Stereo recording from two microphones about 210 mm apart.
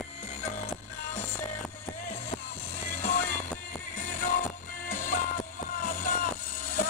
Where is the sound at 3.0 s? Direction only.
40° left (ahead or behind).